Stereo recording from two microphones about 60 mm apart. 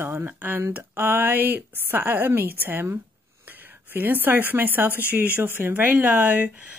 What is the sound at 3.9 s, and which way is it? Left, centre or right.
A woman's voice, right.